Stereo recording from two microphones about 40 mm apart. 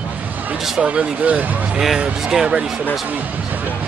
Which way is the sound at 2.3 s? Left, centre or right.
Centre.